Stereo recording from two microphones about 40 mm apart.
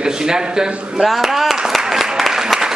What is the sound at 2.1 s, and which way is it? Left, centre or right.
Applause, centre.